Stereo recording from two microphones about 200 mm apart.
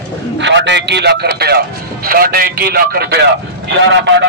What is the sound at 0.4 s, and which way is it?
A man's voice, 60° right (ahead or behind).